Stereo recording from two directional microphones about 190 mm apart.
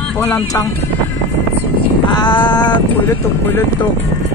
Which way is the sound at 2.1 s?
25° left (ahead or behind).